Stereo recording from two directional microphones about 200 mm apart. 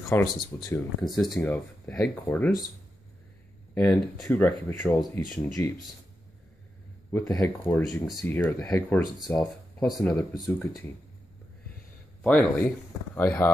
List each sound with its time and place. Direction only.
0.1 s speech: 15° left (ahead or behind)
1.0 s speech: centre (ahead or behind)
3.7 s speech: 5° left (ahead or behind)
7.1 s speech: 15° left (ahead or behind)
12.2 s speech: 5° left (ahead or behind)